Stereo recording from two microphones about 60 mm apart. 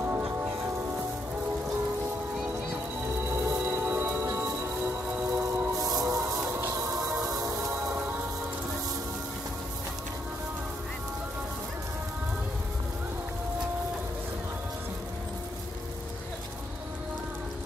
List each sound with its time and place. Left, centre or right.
3.3 s a sound: right
3.6 s music: right
4.2 s music: right
4.8 s a sound: right
5.3 s train: right
5.9 s music: right